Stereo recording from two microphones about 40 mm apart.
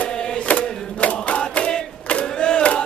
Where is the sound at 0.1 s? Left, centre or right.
Centre.